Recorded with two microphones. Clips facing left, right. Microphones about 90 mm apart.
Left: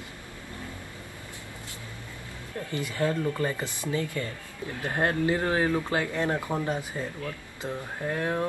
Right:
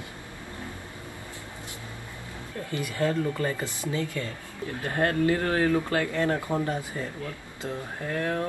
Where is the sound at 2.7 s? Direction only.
20° left (ahead or behind).